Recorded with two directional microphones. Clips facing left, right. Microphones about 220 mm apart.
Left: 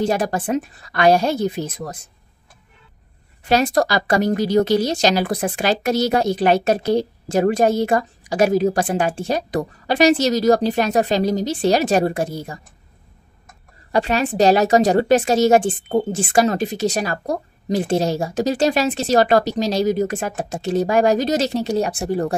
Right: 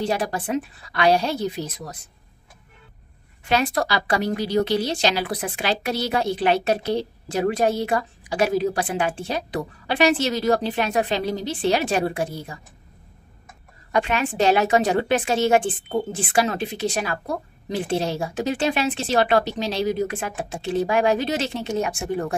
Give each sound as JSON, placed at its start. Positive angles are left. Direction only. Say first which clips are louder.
{"t": 0.0, "sound": "a woman's voice", "louder": "left 4 dB", "side_deg": 45}
{"t": 3.4, "sound": "a woman's voice", "louder": "left 5 dB", "side_deg": 40}
{"t": 13.9, "sound": "a woman's voice", "louder": "left 4 dB", "side_deg": 35}